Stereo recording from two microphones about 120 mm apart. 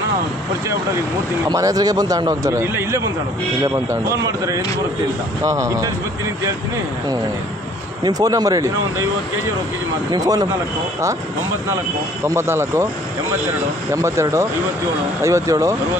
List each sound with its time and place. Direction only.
1.5 s a man's voice: 30° right (ahead or behind)
2.6 s a man's voice: 20° right (ahead or behind)
8.0 s speech: 30° right (ahead or behind)
10.1 s speech: 30° right (ahead or behind)
12.4 s a man's voice: 20° right (ahead or behind)
14.0 s a man's voice: 25° right (ahead or behind)